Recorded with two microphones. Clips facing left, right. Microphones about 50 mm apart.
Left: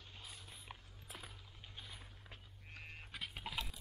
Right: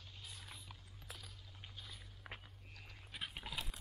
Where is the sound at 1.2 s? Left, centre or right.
Left.